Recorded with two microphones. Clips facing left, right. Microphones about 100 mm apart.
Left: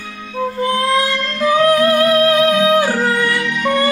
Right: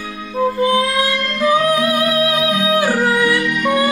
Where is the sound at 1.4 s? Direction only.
5° right (ahead or behind).